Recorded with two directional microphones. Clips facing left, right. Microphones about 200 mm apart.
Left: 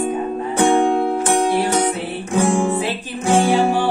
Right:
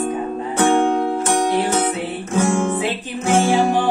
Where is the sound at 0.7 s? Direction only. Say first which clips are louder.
Even; 15° left (ahead or behind).